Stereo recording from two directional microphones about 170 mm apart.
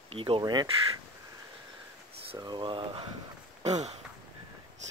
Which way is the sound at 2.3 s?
25° right (ahead or behind).